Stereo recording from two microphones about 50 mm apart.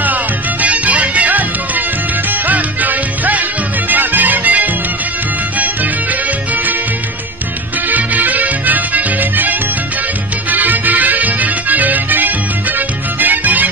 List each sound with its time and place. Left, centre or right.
0.0 s music: right
2.4 s music: right
7.9 s music: right